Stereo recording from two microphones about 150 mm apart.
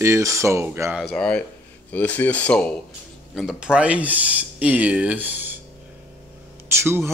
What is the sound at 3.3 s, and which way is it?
Speech, 5° right (ahead or behind).